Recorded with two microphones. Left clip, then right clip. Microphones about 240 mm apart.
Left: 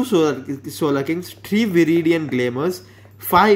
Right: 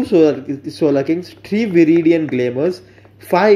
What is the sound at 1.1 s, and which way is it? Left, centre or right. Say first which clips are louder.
Speech: right 4 dB; left.